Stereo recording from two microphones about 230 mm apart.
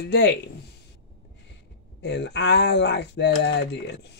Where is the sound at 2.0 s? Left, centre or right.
Left.